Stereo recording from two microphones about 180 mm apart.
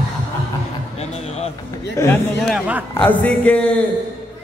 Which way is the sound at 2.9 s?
10° left (ahead or behind).